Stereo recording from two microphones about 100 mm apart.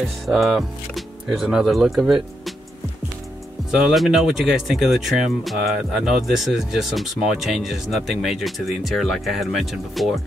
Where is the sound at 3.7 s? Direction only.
Centre (ahead or behind).